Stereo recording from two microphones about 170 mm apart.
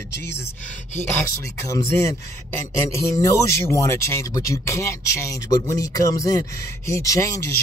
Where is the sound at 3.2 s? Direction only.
15° left (ahead or behind).